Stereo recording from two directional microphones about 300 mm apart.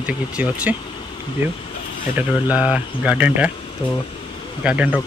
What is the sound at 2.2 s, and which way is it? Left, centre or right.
Speech, centre.